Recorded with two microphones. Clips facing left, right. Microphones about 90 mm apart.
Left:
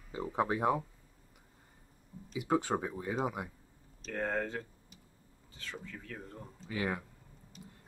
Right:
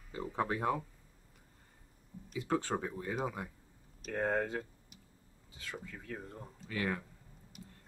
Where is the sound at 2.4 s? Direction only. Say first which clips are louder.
Left 3 dB; 15° left (ahead or behind).